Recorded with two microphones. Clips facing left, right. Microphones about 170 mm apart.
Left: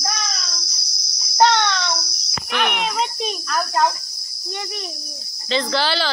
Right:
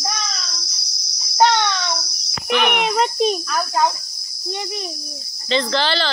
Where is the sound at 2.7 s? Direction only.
55° right (ahead or behind).